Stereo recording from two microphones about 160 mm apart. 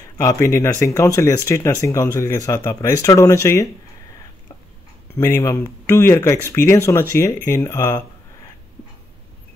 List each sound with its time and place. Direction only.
0.2 s speech: 20° left (ahead or behind)
5.2 s speech: 20° left (ahead or behind)